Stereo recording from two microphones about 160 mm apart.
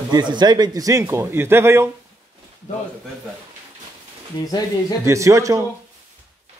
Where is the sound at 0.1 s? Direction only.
30° right (ahead or behind).